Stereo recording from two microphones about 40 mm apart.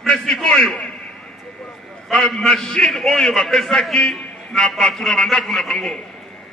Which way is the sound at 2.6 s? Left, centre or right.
Centre.